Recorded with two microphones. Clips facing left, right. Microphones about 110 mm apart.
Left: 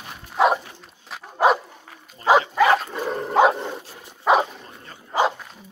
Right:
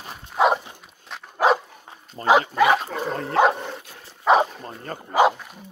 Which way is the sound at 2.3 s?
5° right (ahead or behind).